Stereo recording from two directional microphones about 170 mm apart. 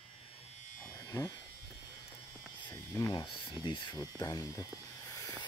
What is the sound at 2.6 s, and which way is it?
Speech, 15° left (ahead or behind).